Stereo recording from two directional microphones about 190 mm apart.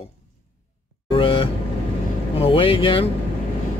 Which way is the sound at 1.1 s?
30° left (ahead or behind).